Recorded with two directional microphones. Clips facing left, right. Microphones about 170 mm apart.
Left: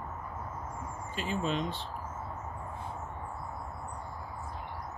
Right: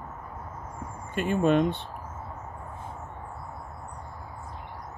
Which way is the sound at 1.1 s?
55° right (ahead or behind).